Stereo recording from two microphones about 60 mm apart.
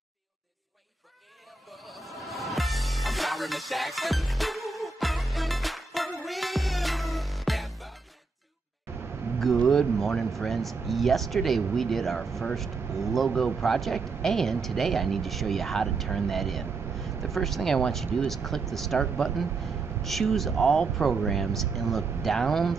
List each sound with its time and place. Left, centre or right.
1.7 s music: centre
8.9 s a sound: right
9.4 s speech: centre